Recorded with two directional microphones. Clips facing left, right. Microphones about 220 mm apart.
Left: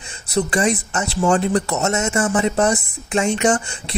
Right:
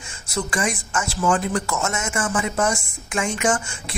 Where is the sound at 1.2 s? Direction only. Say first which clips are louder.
Left 5 dB; 40° left (ahead or behind).